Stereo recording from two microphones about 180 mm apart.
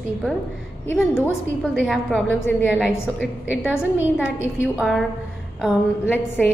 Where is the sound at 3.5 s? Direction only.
5° right (ahead or behind).